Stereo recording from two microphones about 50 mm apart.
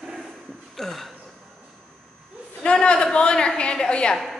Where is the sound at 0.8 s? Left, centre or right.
Centre.